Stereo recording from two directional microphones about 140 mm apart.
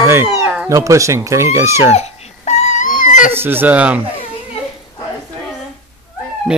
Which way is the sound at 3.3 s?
15° right (ahead or behind).